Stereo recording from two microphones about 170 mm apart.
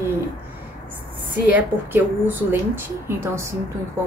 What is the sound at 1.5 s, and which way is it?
Speech, 10° right (ahead or behind).